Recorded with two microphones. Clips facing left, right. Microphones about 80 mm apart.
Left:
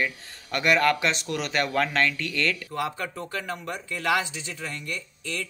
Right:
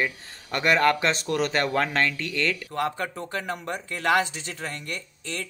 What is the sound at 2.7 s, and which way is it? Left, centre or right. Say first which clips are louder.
Speech: right 2 dB; right.